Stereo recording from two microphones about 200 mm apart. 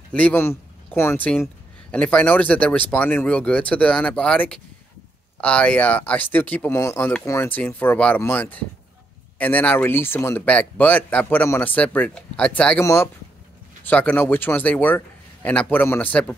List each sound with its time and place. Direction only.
0.1 s speech: 5° left (ahead or behind)